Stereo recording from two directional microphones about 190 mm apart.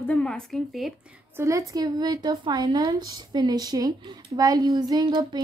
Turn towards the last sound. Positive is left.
turn(degrees=-25)  # may be behind; listen again after turning